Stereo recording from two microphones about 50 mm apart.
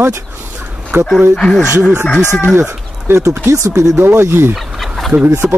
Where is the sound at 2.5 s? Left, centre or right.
Right.